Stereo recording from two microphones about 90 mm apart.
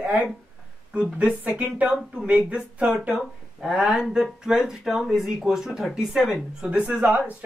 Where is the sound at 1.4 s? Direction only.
15° right (ahead or behind).